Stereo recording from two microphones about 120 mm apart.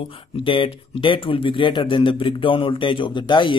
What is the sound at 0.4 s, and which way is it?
Speech, 45° left (ahead or behind).